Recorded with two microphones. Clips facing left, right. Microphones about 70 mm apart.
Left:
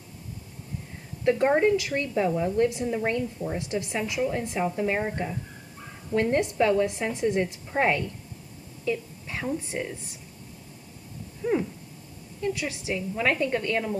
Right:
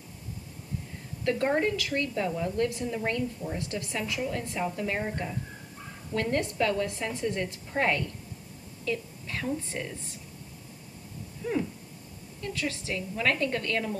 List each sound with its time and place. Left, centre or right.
1.2 s a woman's voice: centre
11.4 s a sound: centre
12.4 s a woman's voice: centre